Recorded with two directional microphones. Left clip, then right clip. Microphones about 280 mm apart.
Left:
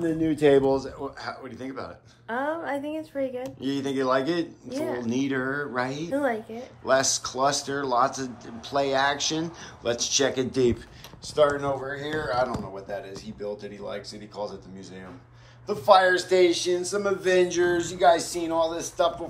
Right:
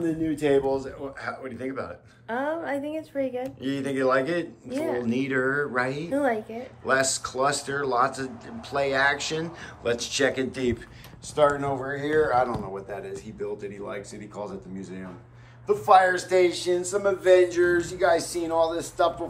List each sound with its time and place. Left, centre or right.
0.2 s speech: left
1.2 s a woman's voice: centre
11.3 s speech: centre
15.6 s a woman's voice: centre